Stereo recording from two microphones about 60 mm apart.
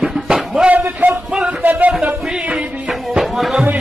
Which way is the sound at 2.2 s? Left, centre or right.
Centre.